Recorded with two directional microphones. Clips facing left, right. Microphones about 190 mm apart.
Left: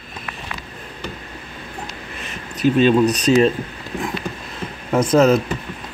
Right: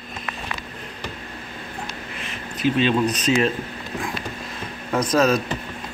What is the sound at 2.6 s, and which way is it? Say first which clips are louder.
Speech: left 5 dB; 45° left (ahead or behind).